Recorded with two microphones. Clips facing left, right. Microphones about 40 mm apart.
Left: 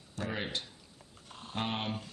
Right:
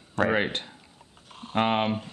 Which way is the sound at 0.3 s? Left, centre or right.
Right.